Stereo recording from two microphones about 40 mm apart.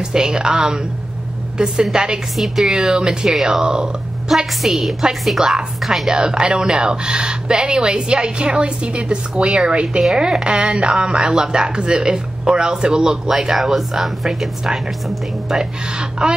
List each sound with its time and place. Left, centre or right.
0.1 s a woman's voice: centre
2.3 s speech: centre
3.3 s speech: centre
3.6 s a woman's voice: centre
4.3 s a woman's voice: centre
5.0 s a woman's voice: centre
13.3 s a woman's voice: centre